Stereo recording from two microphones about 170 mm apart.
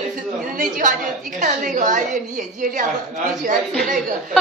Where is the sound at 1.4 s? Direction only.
50° right (ahead or behind).